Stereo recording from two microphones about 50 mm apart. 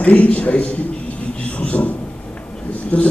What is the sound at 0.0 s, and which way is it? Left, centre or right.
A man's voice, left.